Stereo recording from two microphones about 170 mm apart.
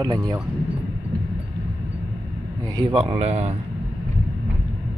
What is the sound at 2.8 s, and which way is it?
Speech, 25° right (ahead or behind).